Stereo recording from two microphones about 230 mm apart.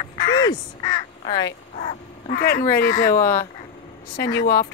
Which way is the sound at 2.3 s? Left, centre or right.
Left.